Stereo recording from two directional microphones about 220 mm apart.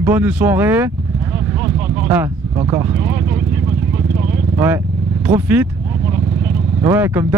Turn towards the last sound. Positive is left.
turn(degrees=-10)  # may be behind; listen again after turning